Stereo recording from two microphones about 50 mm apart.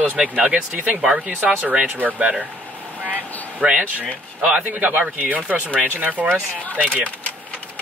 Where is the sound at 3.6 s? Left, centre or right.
Centre.